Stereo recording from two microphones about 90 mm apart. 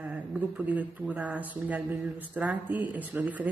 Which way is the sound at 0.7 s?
15° right (ahead or behind).